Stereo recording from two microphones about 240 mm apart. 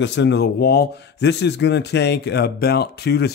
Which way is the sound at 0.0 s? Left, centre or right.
Left.